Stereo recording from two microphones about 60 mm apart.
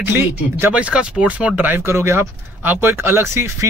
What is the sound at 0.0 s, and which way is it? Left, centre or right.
Speech, right.